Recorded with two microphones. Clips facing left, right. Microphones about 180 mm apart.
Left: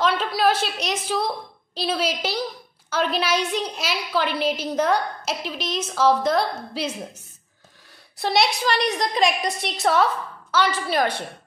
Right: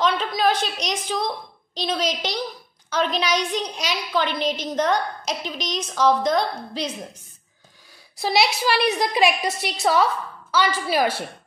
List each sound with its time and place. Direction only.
0.0 s a woman's voice: 5° left (ahead or behind)
8.2 s a woman's voice: centre (ahead or behind)